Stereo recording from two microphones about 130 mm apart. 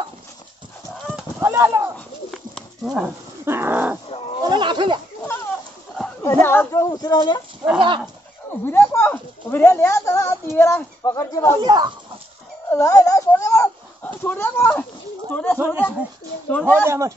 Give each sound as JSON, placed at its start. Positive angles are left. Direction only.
{"t": 1.4, "sound": "a sound", "side_deg": -20}
{"t": 2.3, "sound": "livestock", "side_deg": 0}
{"t": 3.4, "sound": "dog", "side_deg": -20}
{"t": 4.5, "sound": "a sound", "side_deg": -35}
{"t": 5.2, "sound": "a sound", "side_deg": 15}
{"t": 6.2, "sound": "speech", "side_deg": 15}
{"t": 8.6, "sound": "speech", "side_deg": 15}
{"t": 11.6, "sound": "speech", "side_deg": -35}
{"t": 12.6, "sound": "a sound", "side_deg": 25}
{"t": 15.5, "sound": "speech", "side_deg": -15}
{"t": 16.4, "sound": "speech", "side_deg": 15}
{"t": 16.8, "sound": "speech", "side_deg": -20}